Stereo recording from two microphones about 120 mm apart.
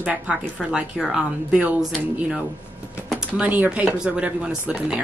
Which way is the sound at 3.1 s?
10° right (ahead or behind).